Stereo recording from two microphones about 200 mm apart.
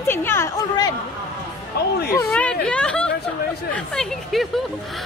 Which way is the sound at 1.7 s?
55° left (ahead or behind).